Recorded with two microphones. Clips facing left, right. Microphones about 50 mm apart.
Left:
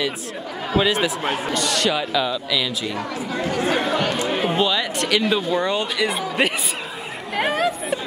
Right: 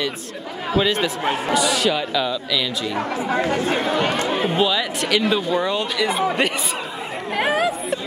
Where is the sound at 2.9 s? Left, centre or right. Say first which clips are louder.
Right 4 dB; right.